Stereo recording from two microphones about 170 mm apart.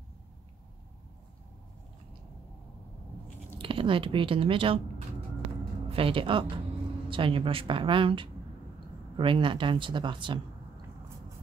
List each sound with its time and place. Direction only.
3.5 s speech: 30° right (ahead or behind)
5.9 s speech: 35° right (ahead or behind)